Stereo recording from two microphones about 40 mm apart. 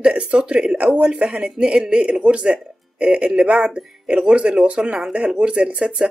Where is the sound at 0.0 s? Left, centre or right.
Right.